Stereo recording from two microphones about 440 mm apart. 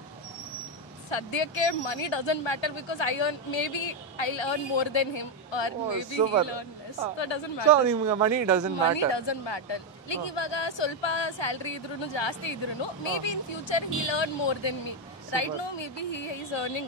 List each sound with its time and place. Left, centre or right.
1.1 s speech: left
8.1 s speech: centre
8.9 s speech: left